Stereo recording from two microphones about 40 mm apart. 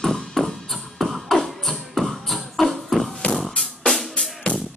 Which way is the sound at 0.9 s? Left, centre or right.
Centre.